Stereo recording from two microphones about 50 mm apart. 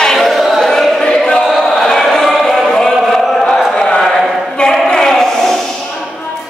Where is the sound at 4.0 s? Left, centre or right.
Centre.